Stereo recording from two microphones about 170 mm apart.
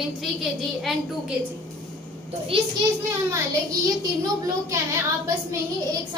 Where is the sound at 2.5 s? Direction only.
35° right (ahead or behind).